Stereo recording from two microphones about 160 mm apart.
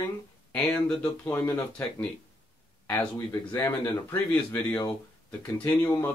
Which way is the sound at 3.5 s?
15° left (ahead or behind).